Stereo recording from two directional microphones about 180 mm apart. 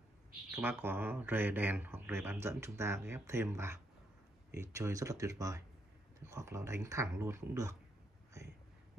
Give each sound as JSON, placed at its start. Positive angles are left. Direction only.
{"t": 0.6, "sound": "speech", "side_deg": -10}